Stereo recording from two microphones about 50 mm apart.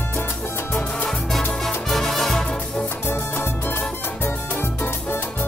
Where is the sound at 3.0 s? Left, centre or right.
Left.